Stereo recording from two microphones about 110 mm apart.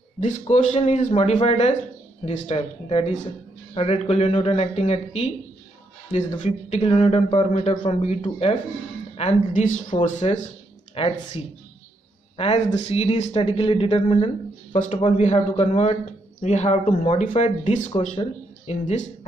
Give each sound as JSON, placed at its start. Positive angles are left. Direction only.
{"t": 0.2, "sound": "a man's voice", "side_deg": 90}
{"t": 6.4, "sound": "speech", "side_deg": 90}
{"t": 6.9, "sound": "a man's voice", "side_deg": 60}
{"t": 8.2, "sound": "speech", "side_deg": 60}
{"t": 9.1, "sound": "a woman's voice", "side_deg": 80}
{"t": 10.0, "sound": "speech", "side_deg": 90}
{"t": 11.0, "sound": "speech", "side_deg": 55}
{"t": 12.6, "sound": "speech", "side_deg": 60}
{"t": 14.9, "sound": "a man's voice", "side_deg": 70}
{"t": 15.5, "sound": "a man's voice", "side_deg": 65}
{"t": 16.4, "sound": "speech", "side_deg": 90}